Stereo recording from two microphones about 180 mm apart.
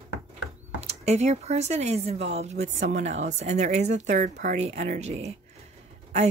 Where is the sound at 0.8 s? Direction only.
35° right (ahead or behind).